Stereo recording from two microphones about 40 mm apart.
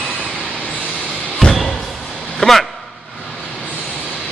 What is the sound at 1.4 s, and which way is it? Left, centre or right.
Slam, left.